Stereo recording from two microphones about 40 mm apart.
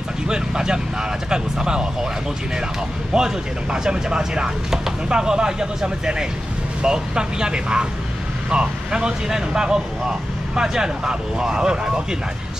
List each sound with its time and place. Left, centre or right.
0.3 s vehicle: centre
1.3 s speech: centre
3.1 s speech: centre